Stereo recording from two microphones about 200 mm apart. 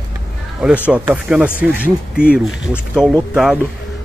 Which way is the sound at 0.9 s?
5° right (ahead or behind).